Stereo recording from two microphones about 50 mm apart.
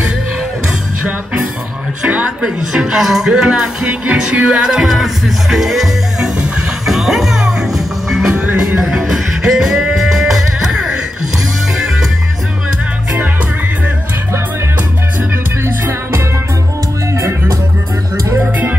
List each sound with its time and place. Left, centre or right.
2.0 s a woman's voice: right
2.7 s music: centre
3.8 s music: right; by 8.4 s centre
8.4 s music: centre
8.9 s music: centre
15.6 s music: right